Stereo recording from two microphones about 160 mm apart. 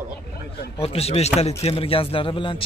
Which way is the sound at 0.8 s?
40° left (ahead or behind).